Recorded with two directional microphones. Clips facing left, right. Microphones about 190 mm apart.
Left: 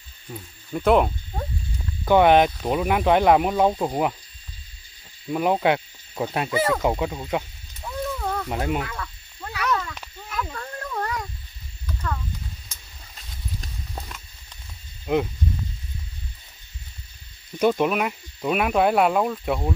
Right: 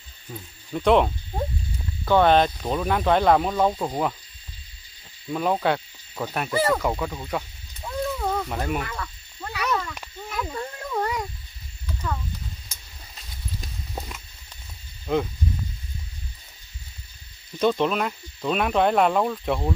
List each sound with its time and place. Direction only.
0.3 s speech: 5° left (ahead or behind)
5.3 s speech: 15° left (ahead or behind)
6.5 s speech: centre (ahead or behind)
6.8 s speech: 20° left (ahead or behind)
7.8 s a sound: 5° right (ahead or behind)
8.5 s speech: 15° left (ahead or behind)
8.8 s frog: centre (ahead or behind)
10.3 s a sound: 15° right (ahead or behind)
13.6 s horse: 10° right (ahead or behind)
15.1 s speech: 15° left (ahead or behind)
17.6 s speech: 10° left (ahead or behind)